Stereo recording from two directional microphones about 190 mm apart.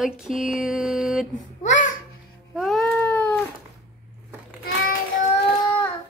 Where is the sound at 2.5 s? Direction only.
Centre (ahead or behind).